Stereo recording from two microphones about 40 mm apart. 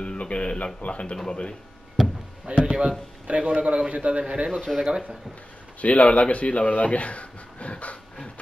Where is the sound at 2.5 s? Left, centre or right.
Right.